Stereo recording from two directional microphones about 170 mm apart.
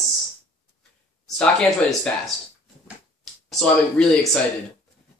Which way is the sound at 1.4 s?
5° left (ahead or behind).